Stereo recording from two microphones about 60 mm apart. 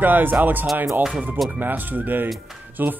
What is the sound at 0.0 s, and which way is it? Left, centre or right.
Speech, right.